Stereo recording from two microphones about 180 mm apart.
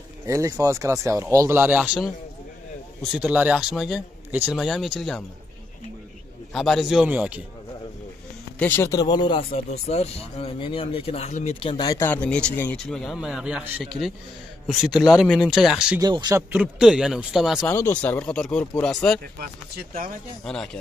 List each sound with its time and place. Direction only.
0.3 s speech: 20° right (ahead or behind); by 5.2 s centre (ahead or behind)
6.5 s speech: centre (ahead or behind)
8.5 s speech: 10° left (ahead or behind); by 9.5 s 25° left (ahead or behind)
9.6 s speech: 35° left (ahead or behind)
11.9 s speech: 10° left (ahead or behind)
16.0 s speech: 25° right (ahead or behind)
16.5 s speech: 5° right (ahead or behind)
17.6 s speech: 15° left (ahead or behind)
20.4 s speech: 5° left (ahead or behind)